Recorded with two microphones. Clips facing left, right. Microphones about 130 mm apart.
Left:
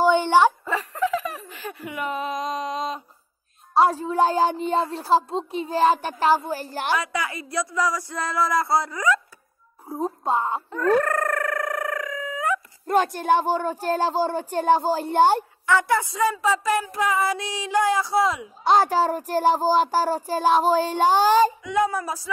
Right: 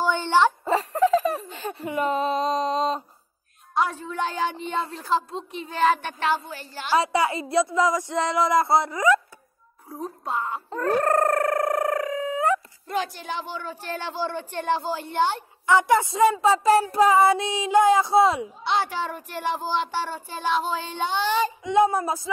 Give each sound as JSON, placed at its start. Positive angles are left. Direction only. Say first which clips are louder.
{"t": 0.0, "sound": "dog", "louder": "left 4 dB", "side_deg": 15}
{"t": 0.7, "sound": "laughter", "louder": "right 4 dB", "side_deg": -35}
{"t": 3.7, "sound": "a woman's voice", "louder": "left 6 dB", "side_deg": 35}
{"t": 7.0, "sound": "speech", "louder": "right 6 dB", "side_deg": -30}
{"t": 9.8, "sound": "a child's voice", "louder": "left 7 dB", "side_deg": 25}
{"t": 10.7, "sound": "a sound", "louder": "left 1 dB", "side_deg": -35}
{"t": 12.8, "sound": "speech", "louder": "left 8 dB", "side_deg": 50}
{"t": 15.6, "sound": "speech", "louder": "right 5 dB", "side_deg": -20}
{"t": 18.6, "sound": "a woman's voice", "louder": "left 7 dB", "side_deg": 40}
{"t": 21.6, "sound": "speech", "louder": "right 3 dB", "side_deg": -25}